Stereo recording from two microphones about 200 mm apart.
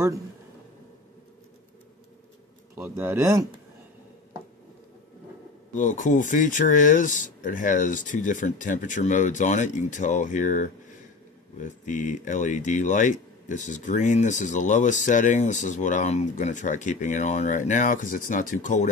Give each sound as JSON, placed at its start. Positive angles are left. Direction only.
{"t": 2.7, "sound": "speech", "side_deg": -10}
{"t": 5.8, "sound": "speech", "side_deg": 40}